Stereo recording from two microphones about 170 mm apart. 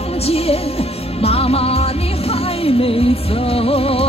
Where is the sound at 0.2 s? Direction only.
35° left (ahead or behind).